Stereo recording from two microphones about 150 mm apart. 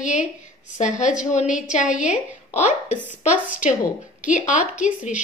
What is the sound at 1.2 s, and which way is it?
A woman's voice, 55° left (ahead or behind).